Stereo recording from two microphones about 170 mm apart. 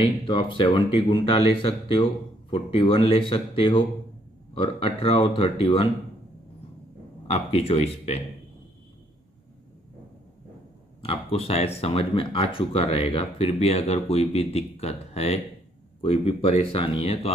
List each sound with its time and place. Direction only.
0.0 s speech: 30° left (ahead or behind)
7.2 s speech: 35° left (ahead or behind)
11.0 s speech: 35° left (ahead or behind)